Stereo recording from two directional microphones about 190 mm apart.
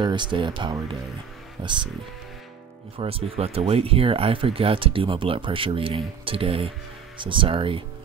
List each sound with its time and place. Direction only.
0.0 s speech: 25° right (ahead or behind)
3.0 s speech: 30° right (ahead or behind)